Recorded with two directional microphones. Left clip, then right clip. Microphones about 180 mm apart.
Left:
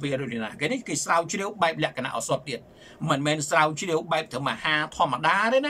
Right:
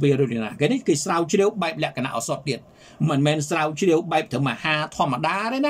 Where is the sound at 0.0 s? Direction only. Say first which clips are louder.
Right 8 dB; 20° right (ahead or behind).